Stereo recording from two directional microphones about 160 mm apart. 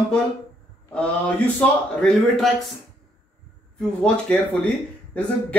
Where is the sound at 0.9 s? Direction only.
10° left (ahead or behind).